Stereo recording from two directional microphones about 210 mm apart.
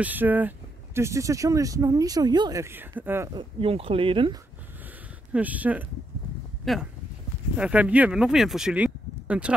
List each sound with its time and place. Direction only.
0.0 s speech: 10° right (ahead or behind)
3.3 s speech: 25° right (ahead or behind)
5.3 s speech: 5° right (ahead or behind)